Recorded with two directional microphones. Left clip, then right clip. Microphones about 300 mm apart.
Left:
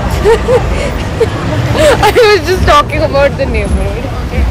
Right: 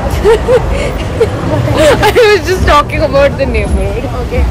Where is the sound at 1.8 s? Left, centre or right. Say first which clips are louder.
Even; centre.